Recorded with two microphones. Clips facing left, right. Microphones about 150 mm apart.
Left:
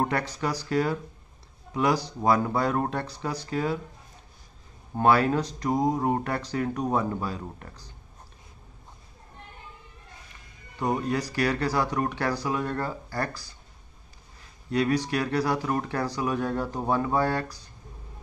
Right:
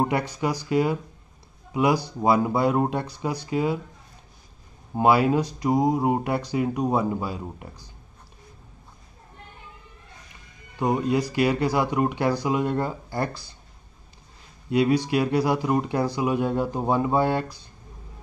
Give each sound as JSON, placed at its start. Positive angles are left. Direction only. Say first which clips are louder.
{"t": 0.0, "sound": "speech", "louder": "right 3 dB", "side_deg": -15}
{"t": 4.9, "sound": "speech", "louder": "right 2 dB", "side_deg": -10}
{"t": 10.8, "sound": "speech", "louder": "right 4 dB", "side_deg": -15}
{"t": 14.7, "sound": "speech", "louder": "right 4 dB", "side_deg": -15}